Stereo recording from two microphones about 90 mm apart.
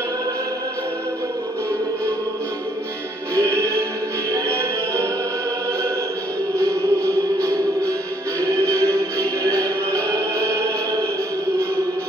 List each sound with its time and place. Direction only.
3.3 s music: 35° right (ahead or behind)
6.6 s music: 35° right (ahead or behind)